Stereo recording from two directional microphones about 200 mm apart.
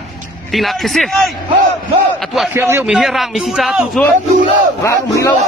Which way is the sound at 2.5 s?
10° right (ahead or behind).